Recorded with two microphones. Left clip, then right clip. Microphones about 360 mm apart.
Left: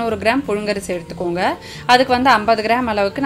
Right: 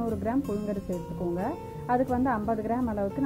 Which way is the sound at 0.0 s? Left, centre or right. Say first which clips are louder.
Left 12 dB; centre.